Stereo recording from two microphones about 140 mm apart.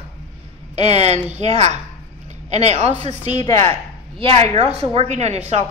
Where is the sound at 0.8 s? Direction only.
50° right (ahead or behind).